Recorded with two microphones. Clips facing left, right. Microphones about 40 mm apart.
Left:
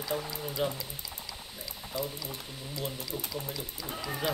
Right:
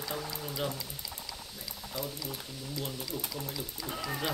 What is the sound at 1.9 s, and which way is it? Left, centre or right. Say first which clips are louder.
Speech: left 3 dB; left.